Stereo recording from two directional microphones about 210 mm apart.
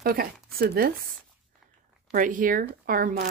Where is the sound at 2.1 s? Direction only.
40° right (ahead or behind).